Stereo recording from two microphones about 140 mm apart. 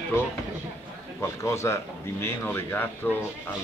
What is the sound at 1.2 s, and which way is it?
Speech, 20° left (ahead or behind).